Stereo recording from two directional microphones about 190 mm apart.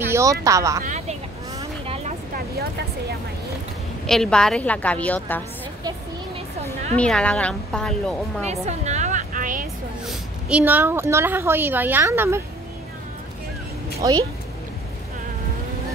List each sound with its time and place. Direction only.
0.0 s speech: 15° right (ahead or behind)
0.8 s speech: 40° right (ahead or behind)
4.0 s a woman's voice: 5° left (ahead or behind)
7.0 s a woman's voice: 5° left (ahead or behind)
8.5 s music: 35° right (ahead or behind)
10.0 s a woman's voice: 10° right (ahead or behind)
14.0 s speech: 20° right (ahead or behind)